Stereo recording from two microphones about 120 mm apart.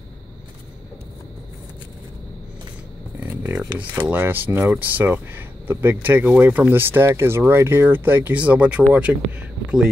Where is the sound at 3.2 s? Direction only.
20° right (ahead or behind).